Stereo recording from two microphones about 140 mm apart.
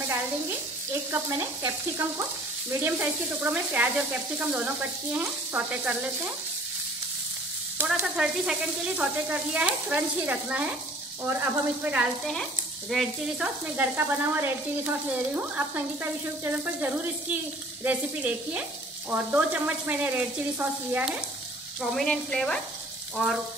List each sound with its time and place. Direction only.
1.1 s stir: 20° right (ahead or behind)
2.8 s sizzle: 10° right (ahead or behind)
7.7 s sizzle: 10° right (ahead or behind)
12.9 s sizzle: 5° right (ahead or behind)
21.9 s speech: 5° left (ahead or behind)